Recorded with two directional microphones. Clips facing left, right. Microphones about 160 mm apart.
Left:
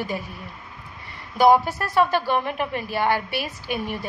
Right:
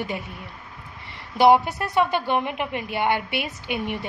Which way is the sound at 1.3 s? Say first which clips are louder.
Even; 25° right (ahead or behind).